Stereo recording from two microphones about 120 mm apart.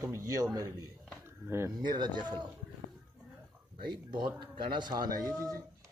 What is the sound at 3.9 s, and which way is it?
A man's voice, 40° right (ahead or behind).